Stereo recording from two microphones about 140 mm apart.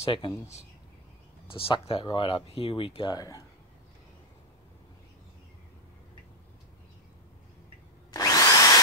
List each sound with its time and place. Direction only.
0.0 s speech: 40° left (ahead or behind)
1.5 s speech: 40° left (ahead or behind); by 3.4 s 25° left (ahead or behind)
8.1 s drill: 25° left (ahead or behind)